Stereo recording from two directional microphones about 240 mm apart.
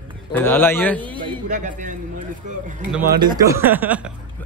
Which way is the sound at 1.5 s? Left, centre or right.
Right.